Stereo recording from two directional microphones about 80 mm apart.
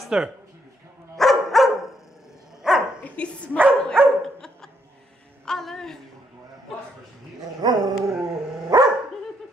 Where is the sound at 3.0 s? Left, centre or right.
Centre.